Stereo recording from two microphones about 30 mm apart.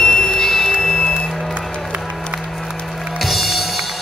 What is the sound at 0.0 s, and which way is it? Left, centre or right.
Music, left.